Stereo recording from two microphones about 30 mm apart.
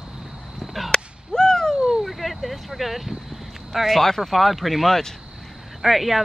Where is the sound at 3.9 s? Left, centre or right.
Centre.